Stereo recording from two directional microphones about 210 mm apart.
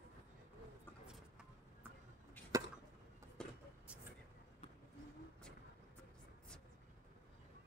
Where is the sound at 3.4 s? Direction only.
5° left (ahead or behind).